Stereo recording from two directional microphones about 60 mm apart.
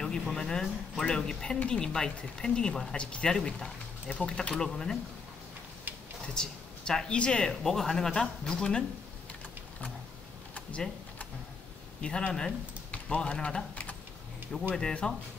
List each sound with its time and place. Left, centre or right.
0.0 s speech: centre
3.0 s speech: centre
6.2 s speech: centre
12.0 s speech: centre
14.7 s speech: centre